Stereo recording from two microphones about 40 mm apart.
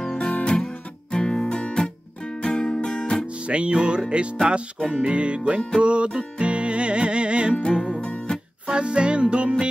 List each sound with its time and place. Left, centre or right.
0.0 s guitar: centre
3.3 s music: right
7.7 s music: centre
8.0 s music: left
8.6 s music: right